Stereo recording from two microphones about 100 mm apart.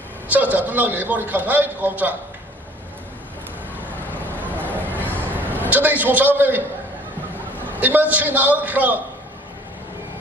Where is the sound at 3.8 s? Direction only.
20° left (ahead or behind).